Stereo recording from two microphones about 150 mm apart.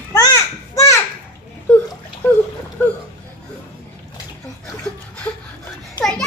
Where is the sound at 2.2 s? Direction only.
10° left (ahead or behind).